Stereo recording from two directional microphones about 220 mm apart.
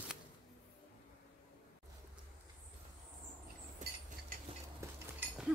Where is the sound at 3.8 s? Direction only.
35° right (ahead or behind).